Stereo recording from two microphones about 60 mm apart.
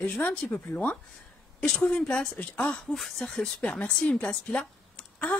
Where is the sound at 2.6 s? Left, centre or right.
Centre.